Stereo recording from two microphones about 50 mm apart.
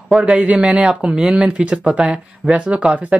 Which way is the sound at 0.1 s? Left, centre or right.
Centre.